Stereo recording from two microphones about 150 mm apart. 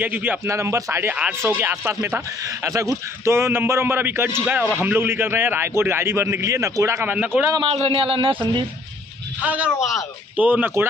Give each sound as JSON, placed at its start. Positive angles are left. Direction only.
{"t": 0.0, "sound": "speech", "side_deg": -10}
{"t": 7.6, "sound": "speech", "side_deg": -40}
{"t": 9.4, "sound": "speech", "side_deg": -10}